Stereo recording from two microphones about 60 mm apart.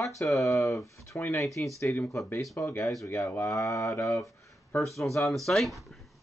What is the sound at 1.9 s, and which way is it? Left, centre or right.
Speech, left.